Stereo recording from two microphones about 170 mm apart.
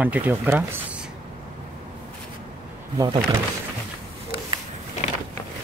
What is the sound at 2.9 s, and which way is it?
Speech, 20° right (ahead or behind).